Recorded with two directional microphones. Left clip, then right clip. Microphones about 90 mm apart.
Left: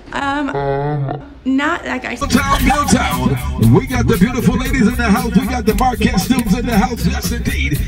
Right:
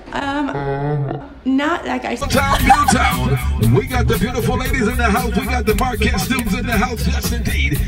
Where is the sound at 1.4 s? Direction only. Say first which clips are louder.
Left 1 dB; 25° right (ahead or behind).